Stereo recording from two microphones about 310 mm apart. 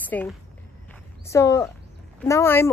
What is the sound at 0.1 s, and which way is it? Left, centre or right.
Speech, centre.